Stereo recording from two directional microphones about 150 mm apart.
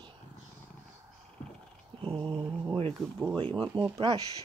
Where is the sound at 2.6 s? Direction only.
35° right (ahead or behind).